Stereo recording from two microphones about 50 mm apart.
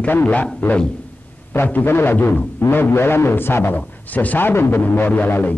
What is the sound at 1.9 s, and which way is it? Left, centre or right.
A man's voice, left.